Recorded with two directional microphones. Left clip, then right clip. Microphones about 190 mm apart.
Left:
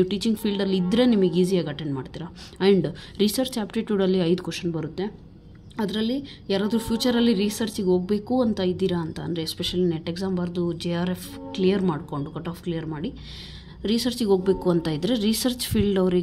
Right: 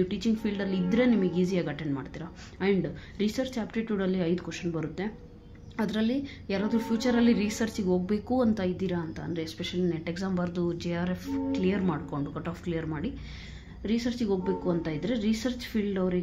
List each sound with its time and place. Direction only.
0.0 s speech: 35° left (ahead or behind)
2.6 s a woman's voice: 40° left (ahead or behind)
13.8 s speech: 40° left (ahead or behind)